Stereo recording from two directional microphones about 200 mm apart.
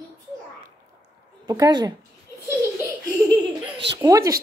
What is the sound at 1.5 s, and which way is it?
Speech, 20° right (ahead or behind).